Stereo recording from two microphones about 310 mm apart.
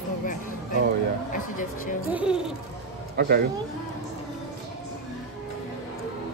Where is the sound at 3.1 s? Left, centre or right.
Right.